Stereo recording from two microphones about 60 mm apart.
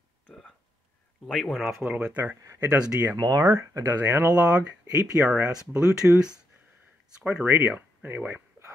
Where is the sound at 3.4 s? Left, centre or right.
Right.